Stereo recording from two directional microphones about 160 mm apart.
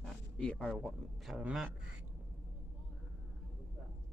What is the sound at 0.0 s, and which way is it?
A man's voice, 5° left (ahead or behind).